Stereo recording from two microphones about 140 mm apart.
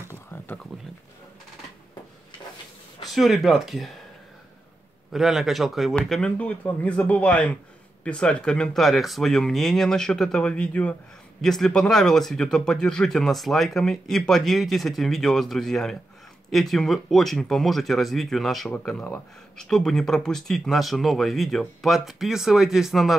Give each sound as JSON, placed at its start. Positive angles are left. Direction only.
{"t": 0.1, "sound": "a sound", "side_deg": 15}
{"t": 3.0, "sound": "speech", "side_deg": 0}
{"t": 5.1, "sound": "speech", "side_deg": 0}